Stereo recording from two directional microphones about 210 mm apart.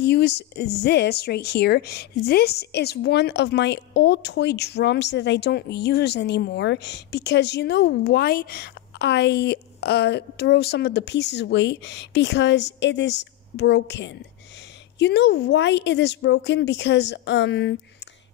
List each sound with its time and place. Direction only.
0.0 s speech: 50° left (ahead or behind)